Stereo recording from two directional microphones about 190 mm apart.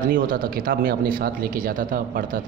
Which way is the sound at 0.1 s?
50° right (ahead or behind).